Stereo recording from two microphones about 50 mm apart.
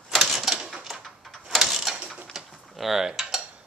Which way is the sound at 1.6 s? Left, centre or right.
Centre.